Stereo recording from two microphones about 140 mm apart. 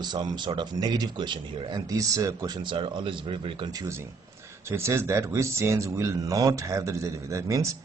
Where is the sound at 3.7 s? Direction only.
25° right (ahead or behind).